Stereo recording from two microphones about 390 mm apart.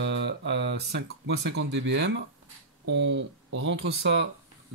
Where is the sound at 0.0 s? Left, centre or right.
Right.